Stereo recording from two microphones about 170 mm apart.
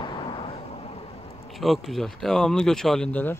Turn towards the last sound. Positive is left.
turn(degrees=5)  # may be behind; listen again after turning